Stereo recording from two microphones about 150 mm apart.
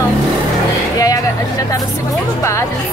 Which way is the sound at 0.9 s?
25° left (ahead or behind).